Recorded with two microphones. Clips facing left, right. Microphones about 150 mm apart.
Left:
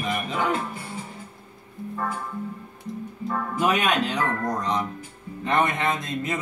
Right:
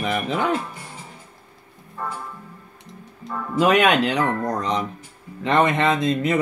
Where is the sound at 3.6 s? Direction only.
75° right (ahead or behind).